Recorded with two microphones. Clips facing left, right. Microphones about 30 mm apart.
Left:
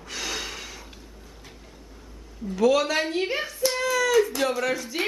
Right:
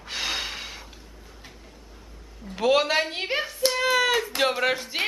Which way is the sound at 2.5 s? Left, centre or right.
Right.